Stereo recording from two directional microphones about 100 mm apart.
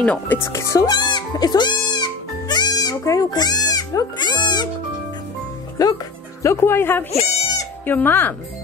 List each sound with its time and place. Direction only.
0.0 s speech: 15° left (ahead or behind)
0.4 s music: 30° left (ahead or behind); by 4.6 s 45° left (ahead or behind)
5.8 s speech: 40° left (ahead or behind)
6.4 s speech: 25° left (ahead or behind)